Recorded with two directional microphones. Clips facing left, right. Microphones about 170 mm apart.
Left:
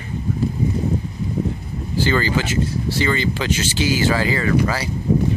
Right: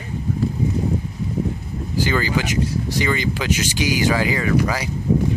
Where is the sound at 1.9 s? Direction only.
10° right (ahead or behind).